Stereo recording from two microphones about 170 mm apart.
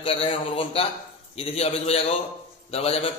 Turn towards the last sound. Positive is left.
turn(degrees=35)  # may be behind; listen again after turning